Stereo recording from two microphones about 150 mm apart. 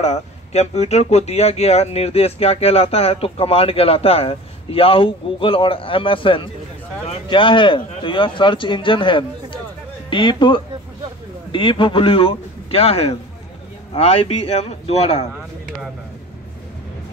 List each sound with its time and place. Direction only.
0.0 s speech: 45° left (ahead or behind)